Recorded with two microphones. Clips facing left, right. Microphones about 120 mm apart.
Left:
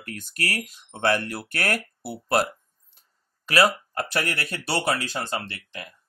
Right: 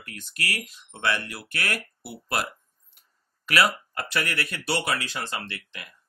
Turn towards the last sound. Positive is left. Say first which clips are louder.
# left 4 dB
turn(degrees=35)  # may be behind; listen again after turning